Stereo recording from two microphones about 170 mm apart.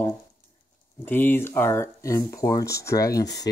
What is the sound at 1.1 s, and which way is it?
Speech, 10° left (ahead or behind).